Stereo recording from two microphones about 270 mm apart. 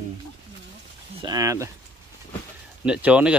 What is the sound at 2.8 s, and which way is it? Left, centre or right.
Speech, centre.